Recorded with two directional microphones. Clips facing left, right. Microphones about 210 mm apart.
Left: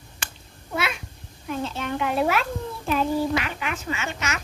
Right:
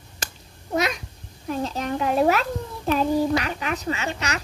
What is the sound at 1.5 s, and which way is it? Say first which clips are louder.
Speech: right 2 dB; 40° right (ahead or behind).